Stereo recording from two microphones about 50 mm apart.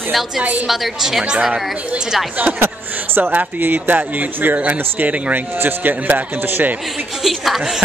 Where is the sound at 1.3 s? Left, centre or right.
Centre.